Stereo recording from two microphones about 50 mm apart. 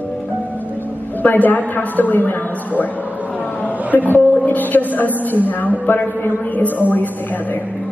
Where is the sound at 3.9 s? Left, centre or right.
Left.